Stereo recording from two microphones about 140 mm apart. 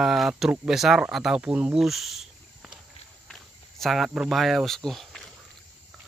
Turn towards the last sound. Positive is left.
turn(degrees=0)  # may be behind; listen again after turning